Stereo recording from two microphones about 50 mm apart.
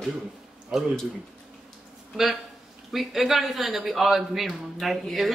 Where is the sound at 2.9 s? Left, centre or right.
Centre.